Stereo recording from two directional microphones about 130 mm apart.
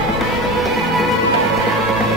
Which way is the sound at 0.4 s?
Centre (ahead or behind).